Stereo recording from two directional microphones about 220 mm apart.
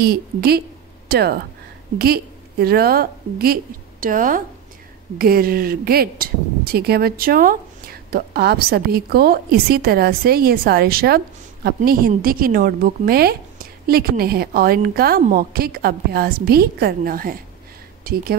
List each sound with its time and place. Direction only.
0.0 s a woman's voice: 45° right (ahead or behind)